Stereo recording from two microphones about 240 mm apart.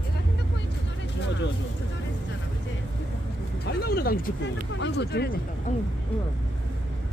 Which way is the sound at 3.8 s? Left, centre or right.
Left.